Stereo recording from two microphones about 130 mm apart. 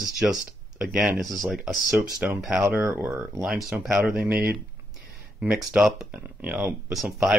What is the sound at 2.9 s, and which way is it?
Speech, 20° right (ahead or behind).